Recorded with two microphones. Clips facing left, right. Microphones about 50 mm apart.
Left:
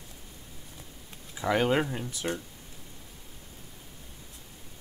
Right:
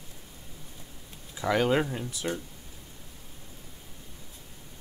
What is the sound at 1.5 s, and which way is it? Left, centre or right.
Speech, left.